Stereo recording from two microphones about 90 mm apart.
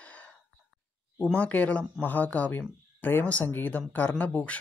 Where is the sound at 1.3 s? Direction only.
15° left (ahead or behind).